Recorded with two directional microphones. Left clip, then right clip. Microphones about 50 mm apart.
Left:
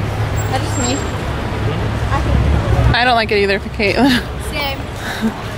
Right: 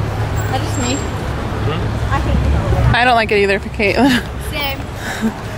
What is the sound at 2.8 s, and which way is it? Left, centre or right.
A woman's voice, centre.